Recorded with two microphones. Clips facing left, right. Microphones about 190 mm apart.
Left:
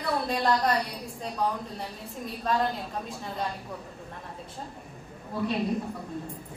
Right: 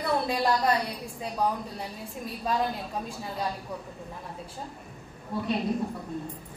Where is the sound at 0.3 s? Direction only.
Centre (ahead or behind).